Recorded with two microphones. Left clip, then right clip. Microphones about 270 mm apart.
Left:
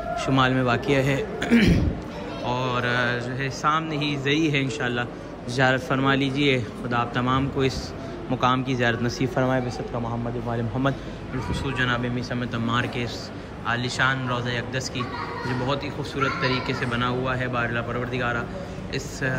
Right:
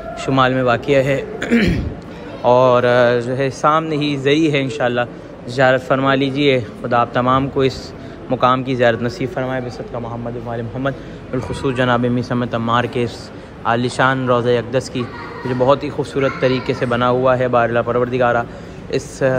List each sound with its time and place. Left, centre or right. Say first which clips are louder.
0.1 s a man's voice: right 7 dB; centre
9.3 s speech: right 2 dB; centre